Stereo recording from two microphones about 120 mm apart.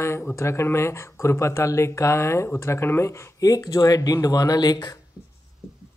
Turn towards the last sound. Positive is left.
turn(degrees=35)  # may be behind; listen again after turning